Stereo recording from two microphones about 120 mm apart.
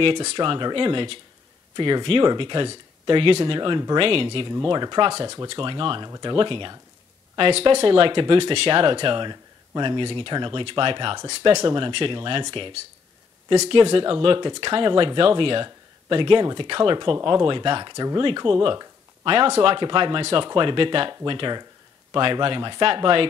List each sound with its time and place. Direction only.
0.0 s speech: 50° right (ahead or behind); by 5.5 s 35° right (ahead or behind)
5.5 s speech: 45° right (ahead or behind)
18.6 s a sound: 45° right (ahead or behind)
19.6 s speech: 45° right (ahead or behind)